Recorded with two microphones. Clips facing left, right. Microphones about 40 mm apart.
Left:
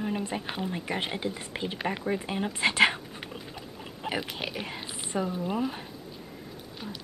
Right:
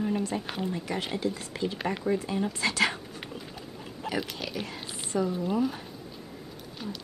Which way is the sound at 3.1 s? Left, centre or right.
Centre.